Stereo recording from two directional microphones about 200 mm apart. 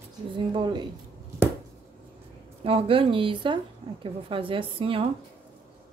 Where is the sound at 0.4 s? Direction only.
25° right (ahead or behind).